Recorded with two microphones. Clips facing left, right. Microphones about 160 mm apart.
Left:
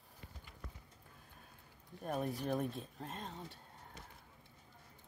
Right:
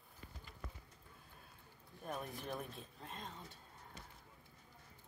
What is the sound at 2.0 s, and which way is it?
Speech, 40° left (ahead or behind).